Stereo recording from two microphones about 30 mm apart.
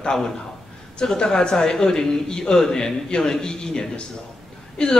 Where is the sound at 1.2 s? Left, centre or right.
Left.